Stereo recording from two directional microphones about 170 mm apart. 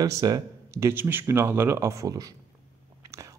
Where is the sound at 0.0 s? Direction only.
20° right (ahead or behind).